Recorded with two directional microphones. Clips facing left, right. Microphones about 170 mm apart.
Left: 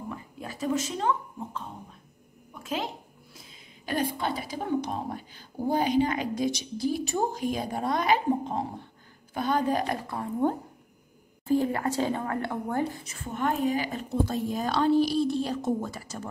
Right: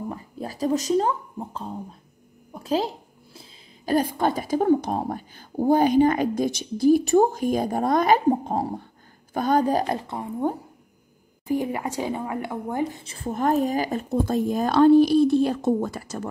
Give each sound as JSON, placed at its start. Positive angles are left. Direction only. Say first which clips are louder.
{"t": 0.1, "sound": "speech", "louder": "right 5 dB", "side_deg": -35}
{"t": 2.5, "sound": "a sound", "louder": "right 8 dB", "side_deg": -35}
{"t": 3.3, "sound": "a woman's voice", "louder": "right 5 dB", "side_deg": -40}
{"t": 10.0, "sound": "speech", "louder": "right 1 dB", "side_deg": -20}
{"t": 13.0, "sound": "a woman's voice", "louder": "right 5 dB", "side_deg": -35}